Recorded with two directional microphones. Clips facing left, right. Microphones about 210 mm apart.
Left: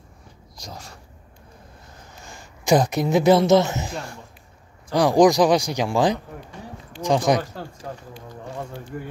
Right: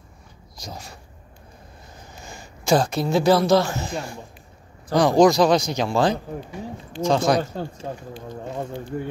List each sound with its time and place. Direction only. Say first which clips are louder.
0.6 s speech: right 2 dB; 5° right (ahead or behind)
2.6 s a man's voice: left 1 dB; 15° left (ahead or behind)
3.9 s speech: right 3 dB; 10° right (ahead or behind)
4.9 s a man's voice: even; 15° left (ahead or behind)
7.5 s speech: right 4 dB; 25° right (ahead or behind)